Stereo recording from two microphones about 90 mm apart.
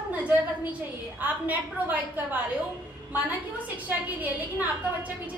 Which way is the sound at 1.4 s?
20° right (ahead or behind).